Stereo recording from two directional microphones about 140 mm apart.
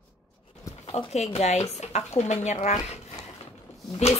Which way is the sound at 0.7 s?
45° left (ahead or behind).